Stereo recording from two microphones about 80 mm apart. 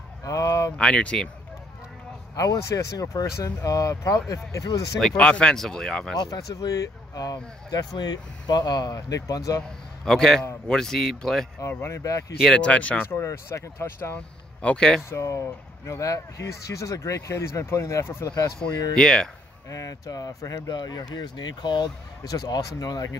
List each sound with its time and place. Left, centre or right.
0.2 s a sound: left
0.7 s speech: centre
2.3 s speech: left
5.1 s speech: centre
6.1 s speech: left
10.0 s speech: centre
11.8 s speech: left
12.4 s speech: centre
13.2 s speech: left
14.1 s speech: centre
15.0 s speech: left
18.9 s speech: centre
19.7 s speech: left
20.7 s speech: left